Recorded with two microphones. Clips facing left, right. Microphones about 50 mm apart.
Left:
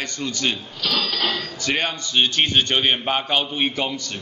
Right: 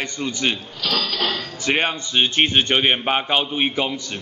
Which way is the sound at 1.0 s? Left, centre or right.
Centre.